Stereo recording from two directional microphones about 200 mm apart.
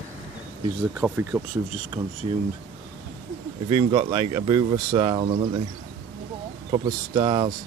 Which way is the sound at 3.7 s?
25° right (ahead or behind).